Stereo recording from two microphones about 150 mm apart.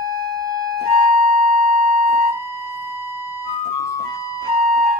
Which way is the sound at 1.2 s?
60° right (ahead or behind).